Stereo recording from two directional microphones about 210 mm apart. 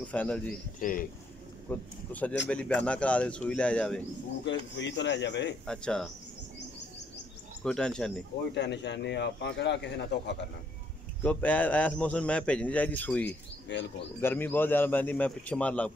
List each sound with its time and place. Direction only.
0.1 s speech: 5° left (ahead or behind)
0.7 s speech: 40° left (ahead or behind)
1.7 s a man's voice: 5° left (ahead or behind)
4.5 s a man's voice: 60° left (ahead or behind)
5.7 s speech: 5° left (ahead or behind)
7.6 s speech: 5° left (ahead or behind)
8.5 s a man's voice: 55° left (ahead or behind)
11.2 s a man's voice: 5° left (ahead or behind)
13.7 s a man's voice: 55° left (ahead or behind)
14.2 s a man's voice: 10° left (ahead or behind)